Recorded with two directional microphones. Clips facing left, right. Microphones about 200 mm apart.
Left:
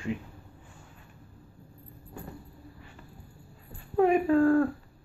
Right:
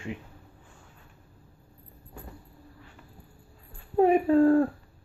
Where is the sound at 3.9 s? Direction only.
35° right (ahead or behind).